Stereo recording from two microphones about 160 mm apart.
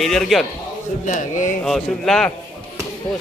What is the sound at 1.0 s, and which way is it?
Speech, 50° left (ahead or behind).